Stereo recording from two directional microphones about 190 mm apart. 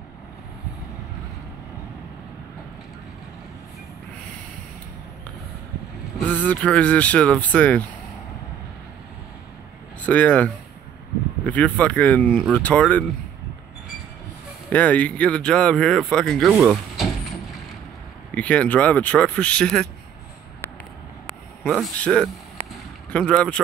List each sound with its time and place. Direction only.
6.1 s speech: 5° left (ahead or behind)
10.0 s speech: 5° left (ahead or behind)
14.7 s speech: 5° left (ahead or behind)
16.4 s vehicle: 5° right (ahead or behind)
18.3 s speech: 5° left (ahead or behind)
21.3 s speech: centre (ahead or behind)
22.7 s boat: 5° left (ahead or behind)